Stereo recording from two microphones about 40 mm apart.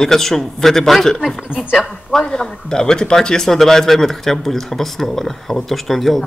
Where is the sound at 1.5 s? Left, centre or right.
Right.